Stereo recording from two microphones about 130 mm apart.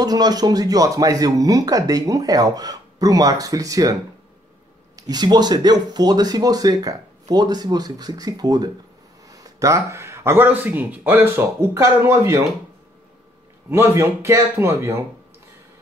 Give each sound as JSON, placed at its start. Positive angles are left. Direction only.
{"t": 0.0, "sound": "speech", "side_deg": -30}
{"t": 4.9, "sound": "speech", "side_deg": -30}
{"t": 13.7, "sound": "speech", "side_deg": -20}